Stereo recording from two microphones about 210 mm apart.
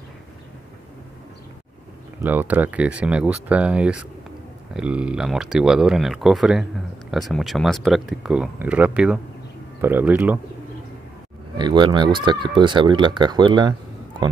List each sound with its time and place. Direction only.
2.2 s speech: 10° right (ahead or behind)
11.5 s speech: 20° right (ahead or behind)